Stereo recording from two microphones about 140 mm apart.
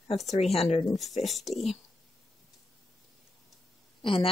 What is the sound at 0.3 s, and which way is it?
Speech, 45° left (ahead or behind).